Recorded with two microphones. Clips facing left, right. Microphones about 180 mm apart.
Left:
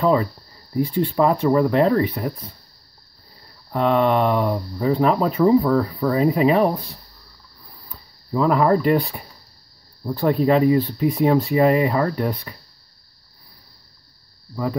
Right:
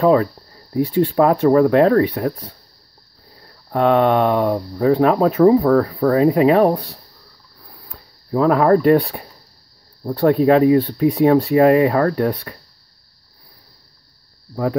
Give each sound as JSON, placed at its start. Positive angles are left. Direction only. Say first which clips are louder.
{"t": 0.0, "sound": "speech", "louder": "right 4 dB", "side_deg": -55}
{"t": 3.7, "sound": "speech", "louder": "right 3 dB", "side_deg": -55}
{"t": 7.7, "sound": "a sound", "louder": "right 3 dB", "side_deg": -55}
{"t": 10.1, "sound": "speech", "louder": "right 4 dB", "side_deg": -60}
{"t": 14.5, "sound": "speech", "louder": "right 4 dB", "side_deg": -55}